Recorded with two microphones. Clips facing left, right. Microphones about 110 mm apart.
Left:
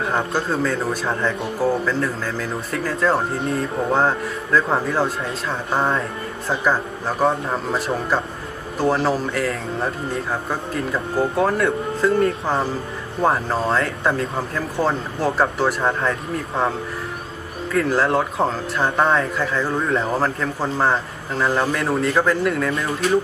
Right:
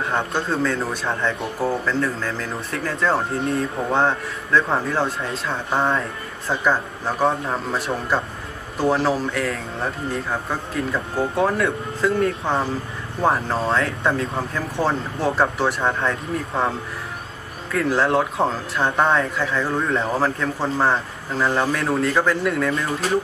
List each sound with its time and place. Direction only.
0.0 s speech: centre (ahead or behind)
17.7 s speech: centre (ahead or behind)